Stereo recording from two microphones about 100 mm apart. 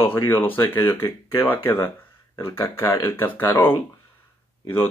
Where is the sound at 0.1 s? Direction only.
20° left (ahead or behind).